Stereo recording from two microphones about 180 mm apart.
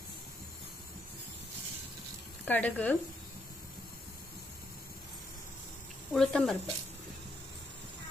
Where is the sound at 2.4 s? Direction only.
10° left (ahead or behind).